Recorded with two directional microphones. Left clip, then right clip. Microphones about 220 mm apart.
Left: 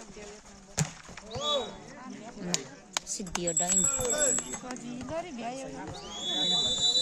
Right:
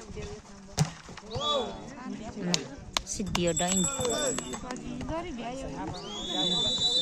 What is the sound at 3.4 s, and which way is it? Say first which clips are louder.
Speech: right 2 dB; 10° right (ahead or behind).